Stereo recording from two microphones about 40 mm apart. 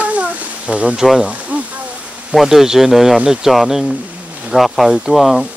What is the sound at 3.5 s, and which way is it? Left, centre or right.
A man's voice, centre.